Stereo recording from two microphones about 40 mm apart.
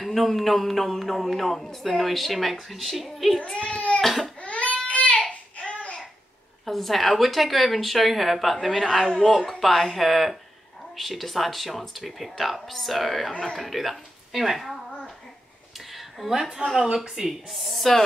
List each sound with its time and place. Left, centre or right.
0.0 s a woman's voice: centre
3.5 s a sound: left
4.0 s crying: centre
4.4 s baby cry: left
4.8 s child singing: left
5.3 s a sound: left
6.6 s a woman's voice: centre
15.9 s a sound: centre
16.8 s a woman's voice: centre
17.1 s a woman's voice: centre